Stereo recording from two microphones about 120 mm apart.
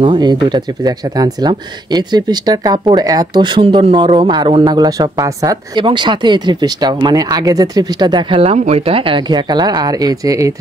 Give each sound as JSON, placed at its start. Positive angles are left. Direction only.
{"t": 0.0, "sound": "speech", "side_deg": -40}
{"t": 5.9, "sound": "speech", "side_deg": -40}
{"t": 8.5, "sound": "speech", "side_deg": -60}